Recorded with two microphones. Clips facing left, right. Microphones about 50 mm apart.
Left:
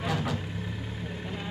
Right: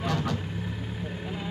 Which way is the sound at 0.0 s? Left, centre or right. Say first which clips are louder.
Right 1 dB; centre.